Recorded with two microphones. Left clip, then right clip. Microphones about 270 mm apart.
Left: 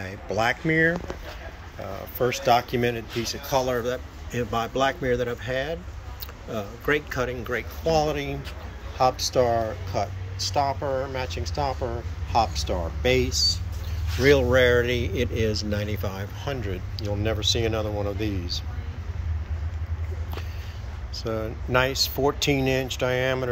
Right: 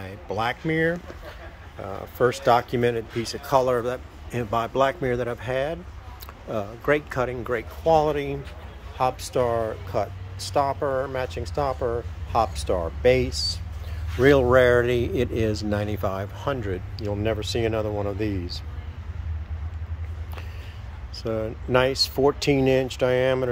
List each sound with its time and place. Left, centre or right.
0.0 s speech: centre
2.0 s speech: right
21.2 s speech: centre